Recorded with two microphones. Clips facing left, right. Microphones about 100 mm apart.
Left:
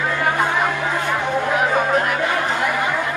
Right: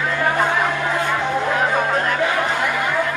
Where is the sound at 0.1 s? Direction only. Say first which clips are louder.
Right 2 dB; 15° left (ahead or behind).